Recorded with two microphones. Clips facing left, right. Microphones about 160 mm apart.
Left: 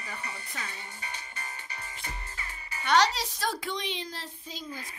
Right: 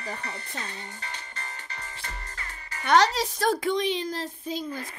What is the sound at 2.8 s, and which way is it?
Speech, 50° right (ahead or behind).